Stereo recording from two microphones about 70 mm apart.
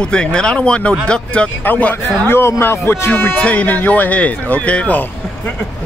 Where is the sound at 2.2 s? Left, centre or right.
Left; by 5.0 s centre.